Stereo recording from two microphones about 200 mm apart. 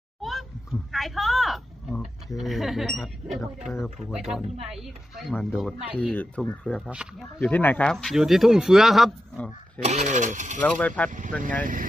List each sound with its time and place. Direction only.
0.2 s a sound: centre (ahead or behind)
0.9 s speech: centre (ahead or behind)
7.0 s speech: 5° right (ahead or behind)
7.3 s speech: 5° left (ahead or behind)
9.8 s speech: 35° right (ahead or behind)
10.6 s speech: 5° left (ahead or behind)
11.1 s speech: 40° right (ahead or behind)